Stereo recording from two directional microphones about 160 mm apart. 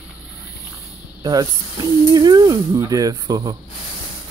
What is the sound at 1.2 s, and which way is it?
Speech, 25° right (ahead or behind).